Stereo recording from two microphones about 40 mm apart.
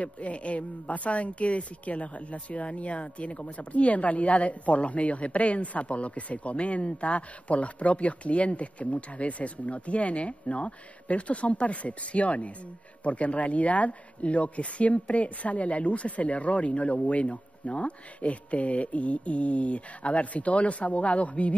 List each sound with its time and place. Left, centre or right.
0.0 s a man's voice: left